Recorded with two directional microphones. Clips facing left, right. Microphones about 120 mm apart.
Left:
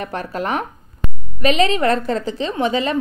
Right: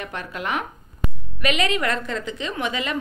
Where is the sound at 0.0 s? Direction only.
35° left (ahead or behind).